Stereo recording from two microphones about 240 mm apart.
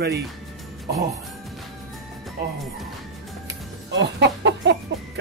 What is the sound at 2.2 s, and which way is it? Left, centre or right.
Speech, centre.